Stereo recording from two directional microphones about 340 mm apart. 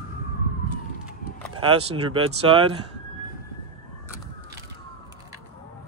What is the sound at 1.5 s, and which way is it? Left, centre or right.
Speech, centre.